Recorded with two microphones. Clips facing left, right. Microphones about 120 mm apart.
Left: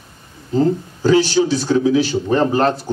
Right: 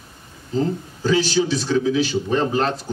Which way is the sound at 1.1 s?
40° left (ahead or behind).